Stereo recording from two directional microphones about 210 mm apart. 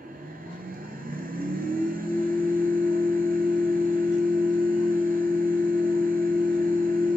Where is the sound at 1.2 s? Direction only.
45° right (ahead or behind).